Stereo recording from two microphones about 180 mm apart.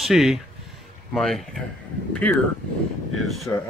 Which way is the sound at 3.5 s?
15° left (ahead or behind).